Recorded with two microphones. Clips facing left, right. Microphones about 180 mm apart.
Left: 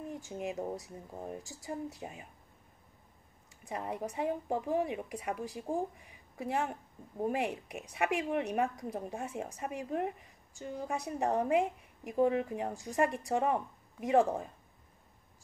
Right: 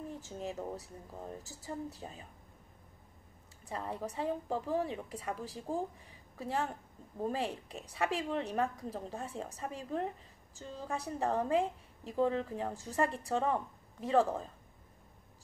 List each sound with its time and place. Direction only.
0.1 s a woman's voice: 15° left (ahead or behind)
3.6 s a woman's voice: 15° left (ahead or behind)